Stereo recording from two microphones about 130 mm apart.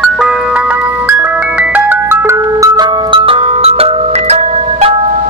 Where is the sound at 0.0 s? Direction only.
5° right (ahead or behind).